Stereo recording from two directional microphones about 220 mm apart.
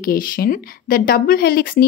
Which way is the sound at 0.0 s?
40° left (ahead or behind).